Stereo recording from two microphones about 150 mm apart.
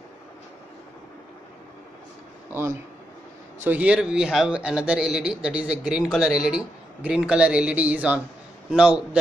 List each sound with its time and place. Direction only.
2.5 s speech: 15° right (ahead or behind)